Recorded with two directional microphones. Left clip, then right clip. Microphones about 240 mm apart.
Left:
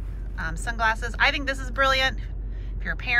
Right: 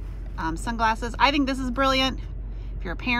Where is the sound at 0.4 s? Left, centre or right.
Centre.